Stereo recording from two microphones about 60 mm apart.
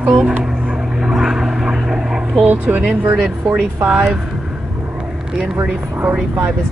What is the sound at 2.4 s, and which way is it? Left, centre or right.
Speech, right.